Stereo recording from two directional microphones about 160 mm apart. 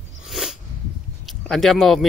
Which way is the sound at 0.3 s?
Centre (ahead or behind).